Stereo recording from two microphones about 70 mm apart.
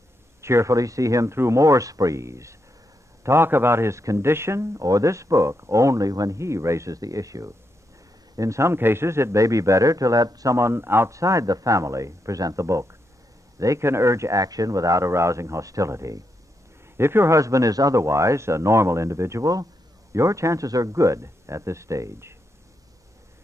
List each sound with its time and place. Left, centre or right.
0.4 s speech: right
3.3 s speech: right
11.1 s speech: right
16.9 s a man's voice: right
17.4 s speech: right